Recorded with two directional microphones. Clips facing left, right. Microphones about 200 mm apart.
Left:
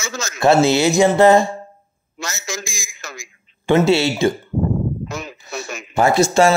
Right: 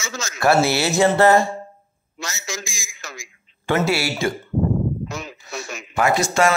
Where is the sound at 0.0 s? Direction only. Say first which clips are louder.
Left 3 dB; 55° left (ahead or behind).